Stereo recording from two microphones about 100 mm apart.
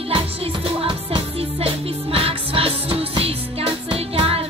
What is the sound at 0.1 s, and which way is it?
Music, 65° right (ahead or behind).